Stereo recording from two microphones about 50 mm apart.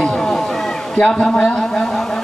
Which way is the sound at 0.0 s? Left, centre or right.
Centre.